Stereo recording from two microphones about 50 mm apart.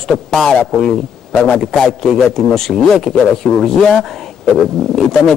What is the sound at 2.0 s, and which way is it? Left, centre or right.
Speech, centre.